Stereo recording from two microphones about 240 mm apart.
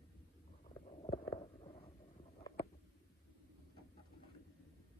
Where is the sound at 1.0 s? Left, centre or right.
Left.